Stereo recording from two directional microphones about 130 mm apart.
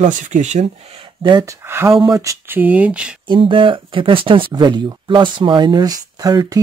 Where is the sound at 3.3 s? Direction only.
40° right (ahead or behind).